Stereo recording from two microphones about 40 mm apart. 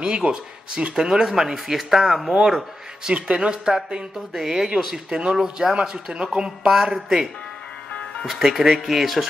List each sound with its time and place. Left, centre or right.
0.0 s speech: right; by 2.3 s centre
2.3 s speech: centre
8.4 s speech: centre